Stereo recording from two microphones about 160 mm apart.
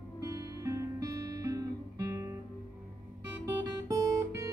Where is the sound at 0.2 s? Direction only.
20° right (ahead or behind).